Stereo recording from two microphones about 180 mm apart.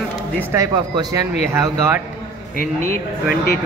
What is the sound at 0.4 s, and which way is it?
Speech, 15° right (ahead or behind).